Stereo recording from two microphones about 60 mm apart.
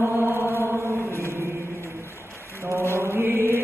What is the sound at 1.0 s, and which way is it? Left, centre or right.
Chant, left.